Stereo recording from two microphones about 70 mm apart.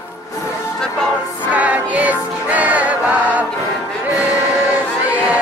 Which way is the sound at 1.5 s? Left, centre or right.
Right.